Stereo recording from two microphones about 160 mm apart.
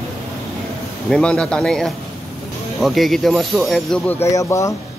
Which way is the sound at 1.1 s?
5° left (ahead or behind).